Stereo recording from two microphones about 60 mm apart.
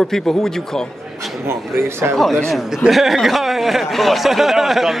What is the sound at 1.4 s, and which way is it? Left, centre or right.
Speech, right.